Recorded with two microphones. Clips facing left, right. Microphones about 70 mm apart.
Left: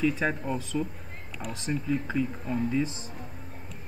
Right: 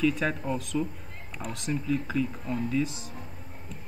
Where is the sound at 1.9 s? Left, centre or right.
Left.